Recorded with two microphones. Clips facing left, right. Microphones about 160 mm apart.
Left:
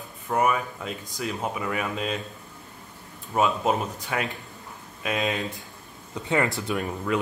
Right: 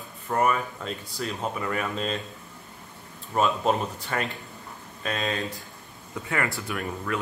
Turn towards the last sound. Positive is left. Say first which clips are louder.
# left 4 dB
turn(degrees=20)  # may be behind; listen again after turning